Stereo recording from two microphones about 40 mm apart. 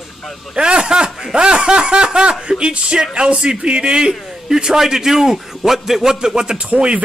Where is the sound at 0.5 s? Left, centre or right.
Right.